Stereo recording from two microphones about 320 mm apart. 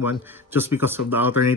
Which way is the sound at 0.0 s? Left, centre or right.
Centre.